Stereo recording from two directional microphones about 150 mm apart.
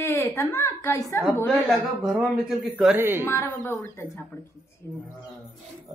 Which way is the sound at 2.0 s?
Centre (ahead or behind).